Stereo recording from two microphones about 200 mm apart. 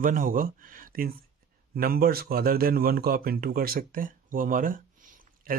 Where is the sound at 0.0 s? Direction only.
45° right (ahead or behind).